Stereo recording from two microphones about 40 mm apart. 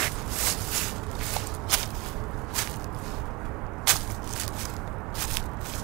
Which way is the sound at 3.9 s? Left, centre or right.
Centre.